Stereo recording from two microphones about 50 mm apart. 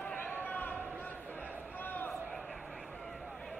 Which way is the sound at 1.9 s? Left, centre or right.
Left.